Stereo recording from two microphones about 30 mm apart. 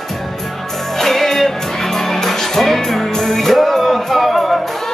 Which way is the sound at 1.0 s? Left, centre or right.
Centre.